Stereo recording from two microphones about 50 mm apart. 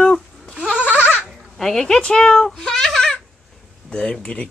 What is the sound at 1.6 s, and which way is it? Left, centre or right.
Speech, centre.